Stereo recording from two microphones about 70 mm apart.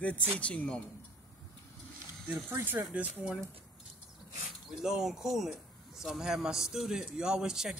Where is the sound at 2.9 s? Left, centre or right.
Centre.